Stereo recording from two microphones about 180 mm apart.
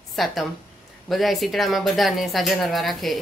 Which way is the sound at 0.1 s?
Centre (ahead or behind).